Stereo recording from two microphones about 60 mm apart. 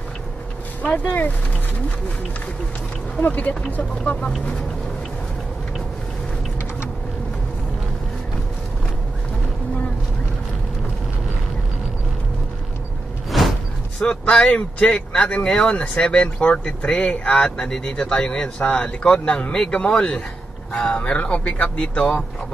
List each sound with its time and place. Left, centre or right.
1.0 s speech: left
3.2 s speech: left
13.3 s a sound: centre
14.0 s speech: centre